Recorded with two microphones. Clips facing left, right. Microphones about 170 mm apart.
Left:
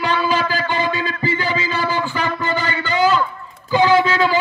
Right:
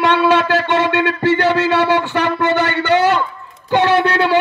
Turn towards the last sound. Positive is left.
turn(degrees=-70)  # may be behind; listen again after turning